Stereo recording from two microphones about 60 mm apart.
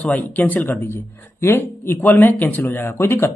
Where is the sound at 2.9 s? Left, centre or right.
Left.